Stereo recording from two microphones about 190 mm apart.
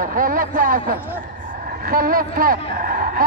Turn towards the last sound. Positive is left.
turn(degrees=-45)  # may be behind; listen again after turning